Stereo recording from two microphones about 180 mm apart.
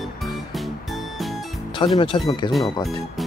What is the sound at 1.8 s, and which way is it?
Speech, 25° left (ahead or behind).